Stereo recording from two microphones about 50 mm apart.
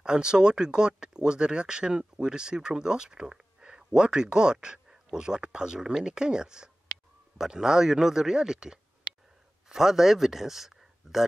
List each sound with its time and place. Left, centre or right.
0.0 s speech: centre